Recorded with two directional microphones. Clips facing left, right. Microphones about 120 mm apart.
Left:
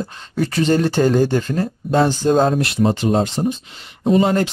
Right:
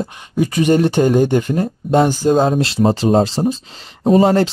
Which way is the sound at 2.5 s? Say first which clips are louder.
Right 2 dB; 30° right (ahead or behind).